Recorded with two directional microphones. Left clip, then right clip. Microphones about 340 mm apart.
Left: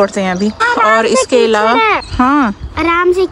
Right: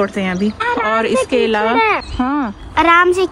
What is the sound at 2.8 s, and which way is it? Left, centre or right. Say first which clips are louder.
Speech: right 1 dB; centre.